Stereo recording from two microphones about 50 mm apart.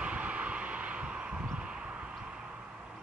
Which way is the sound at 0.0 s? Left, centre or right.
Right.